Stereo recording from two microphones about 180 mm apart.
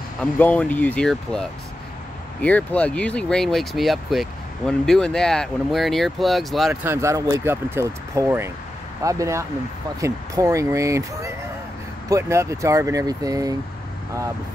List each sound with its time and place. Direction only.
0.2 s speech: 10° left (ahead or behind)
2.4 s speech: 10° left (ahead or behind)
6.7 s speech: 15° right (ahead or behind)